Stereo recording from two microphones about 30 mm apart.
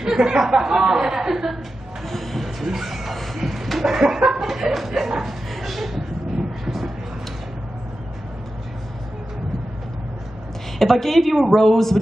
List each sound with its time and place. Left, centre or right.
0.0 s a sound: centre
0.4 s chuckle: centre
2.0 s a woman's voice: centre
2.4 s speech: centre
3.3 s a sound: centre
3.9 s chuckle: centre
5.5 s a sound: centre
6.6 s vehicle: centre
10.8 s a woman's voice: centre